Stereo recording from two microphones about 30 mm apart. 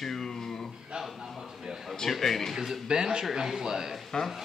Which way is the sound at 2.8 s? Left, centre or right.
Right.